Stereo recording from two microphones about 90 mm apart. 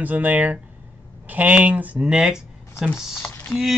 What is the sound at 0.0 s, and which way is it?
Speech, 20° right (ahead or behind).